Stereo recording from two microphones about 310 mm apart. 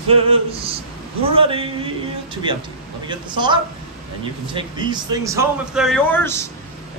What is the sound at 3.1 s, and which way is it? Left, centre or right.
Speech, centre.